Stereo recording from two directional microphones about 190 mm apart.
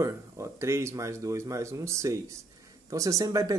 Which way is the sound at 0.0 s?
15° right (ahead or behind).